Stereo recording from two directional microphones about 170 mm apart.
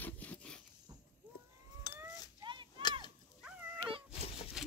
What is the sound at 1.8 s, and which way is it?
Livestock, 25° left (ahead or behind).